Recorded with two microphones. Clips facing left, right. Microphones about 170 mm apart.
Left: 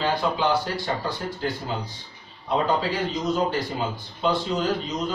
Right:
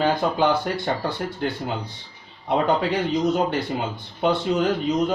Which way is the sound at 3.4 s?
60° right (ahead or behind).